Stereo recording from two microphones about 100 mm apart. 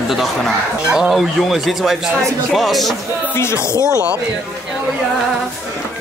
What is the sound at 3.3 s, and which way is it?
Speech, 25° left (ahead or behind).